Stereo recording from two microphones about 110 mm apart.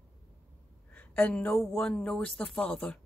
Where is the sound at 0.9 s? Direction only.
15° left (ahead or behind).